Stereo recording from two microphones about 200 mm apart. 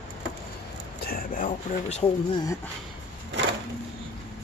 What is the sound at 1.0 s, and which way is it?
Speech, 45° left (ahead or behind).